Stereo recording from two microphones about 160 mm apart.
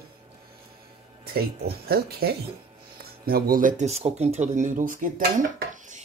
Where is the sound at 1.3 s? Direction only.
75° right (ahead or behind); by 6.0 s 55° right (ahead or behind).